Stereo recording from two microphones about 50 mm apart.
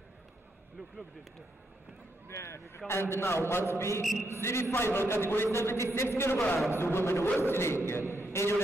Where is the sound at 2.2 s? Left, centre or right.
Left.